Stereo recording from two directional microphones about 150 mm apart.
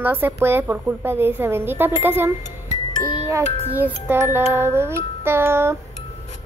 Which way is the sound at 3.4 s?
40° left (ahead or behind).